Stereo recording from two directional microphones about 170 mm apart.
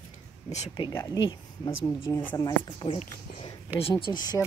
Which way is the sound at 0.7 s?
25° left (ahead or behind).